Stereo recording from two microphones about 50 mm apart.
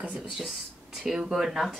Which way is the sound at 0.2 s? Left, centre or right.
Centre.